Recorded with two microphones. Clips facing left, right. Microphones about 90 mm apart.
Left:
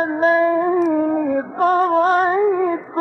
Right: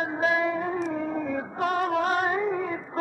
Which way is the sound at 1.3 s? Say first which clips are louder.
Left 10 dB; 35° left (ahead or behind).